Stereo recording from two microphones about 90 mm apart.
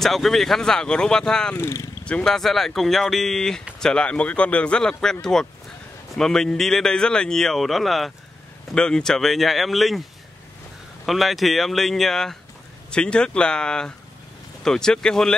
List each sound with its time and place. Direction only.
0.0 s speech: centre (ahead or behind)
1.6 s speech: 30° left (ahead or behind)
2.0 s a man's voice: 10° left (ahead or behind)
11.1 s a man's voice: centre (ahead or behind)